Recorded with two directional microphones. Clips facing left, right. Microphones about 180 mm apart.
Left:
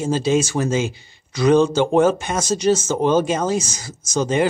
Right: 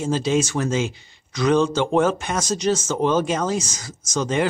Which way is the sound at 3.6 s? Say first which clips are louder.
Left 2 dB; 30° left (ahead or behind).